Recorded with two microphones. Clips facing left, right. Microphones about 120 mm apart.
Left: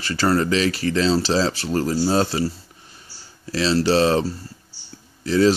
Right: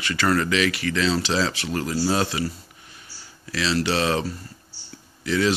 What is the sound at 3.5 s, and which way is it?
Speech, 35° left (ahead or behind).